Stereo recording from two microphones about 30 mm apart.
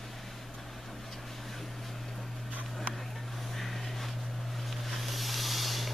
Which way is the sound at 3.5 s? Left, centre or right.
Centre.